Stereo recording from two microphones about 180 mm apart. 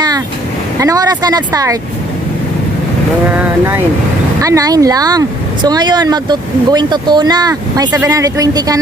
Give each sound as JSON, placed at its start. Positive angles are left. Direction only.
{"t": 0.7, "sound": "speech", "side_deg": -20}
{"t": 3.3, "sound": "speech", "side_deg": -10}